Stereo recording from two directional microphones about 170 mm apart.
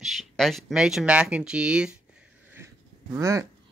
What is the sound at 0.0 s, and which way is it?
Speech, centre (ahead or behind).